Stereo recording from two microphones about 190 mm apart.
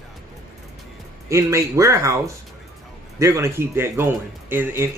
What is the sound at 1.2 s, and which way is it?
Speech, 15° right (ahead or behind).